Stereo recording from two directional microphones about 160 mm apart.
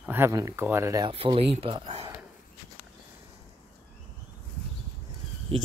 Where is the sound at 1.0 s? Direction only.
35° right (ahead or behind).